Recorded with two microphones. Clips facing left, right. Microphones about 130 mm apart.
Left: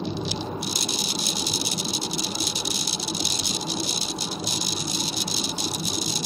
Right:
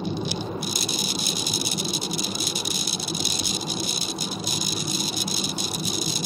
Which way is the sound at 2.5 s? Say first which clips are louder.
Even; 50° right (ahead or behind).